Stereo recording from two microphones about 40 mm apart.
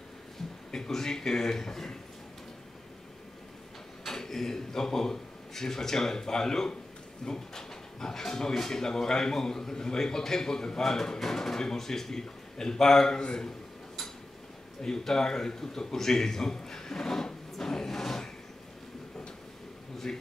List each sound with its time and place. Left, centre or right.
0.7 s speech: centre
4.0 s a man's voice: centre
14.8 s a man's voice: centre
20.1 s speech: centre